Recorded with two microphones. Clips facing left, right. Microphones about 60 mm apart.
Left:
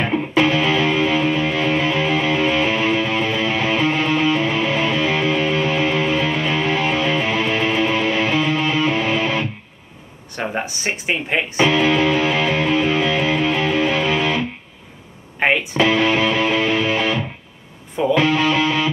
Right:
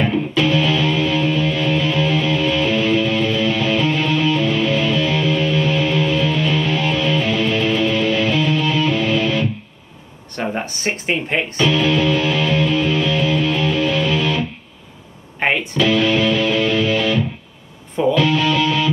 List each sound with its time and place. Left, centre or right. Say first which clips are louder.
0.0 s music: even; left
10.3 s speech: right 1 dB; centre
11.5 s music: left 1 dB; left
15.3 s music: left 1 dB; centre
15.8 s music: right 1 dB; left